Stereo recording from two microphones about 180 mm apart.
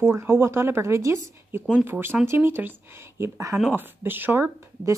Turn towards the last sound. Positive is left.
turn(degrees=-15)  # may be behind; listen again after turning